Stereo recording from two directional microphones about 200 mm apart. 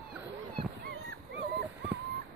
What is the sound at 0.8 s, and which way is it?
Dog, 60° right (ahead or behind).